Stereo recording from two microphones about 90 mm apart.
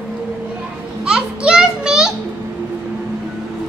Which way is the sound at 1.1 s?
10° right (ahead or behind).